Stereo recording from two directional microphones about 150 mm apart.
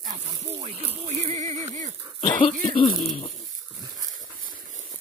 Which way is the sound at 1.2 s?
45° right (ahead or behind).